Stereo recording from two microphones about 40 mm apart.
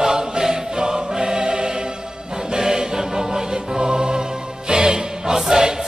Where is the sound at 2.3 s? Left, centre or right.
Right.